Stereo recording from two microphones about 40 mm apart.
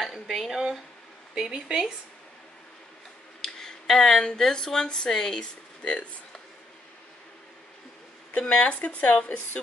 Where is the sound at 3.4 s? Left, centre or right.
Centre; by 6.0 s left.